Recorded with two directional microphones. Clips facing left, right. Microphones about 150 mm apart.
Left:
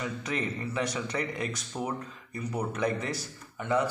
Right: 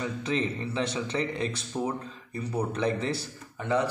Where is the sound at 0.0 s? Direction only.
25° right (ahead or behind).